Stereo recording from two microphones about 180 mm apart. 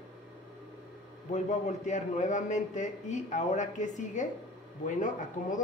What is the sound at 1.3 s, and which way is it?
A man's voice, 40° left (ahead or behind).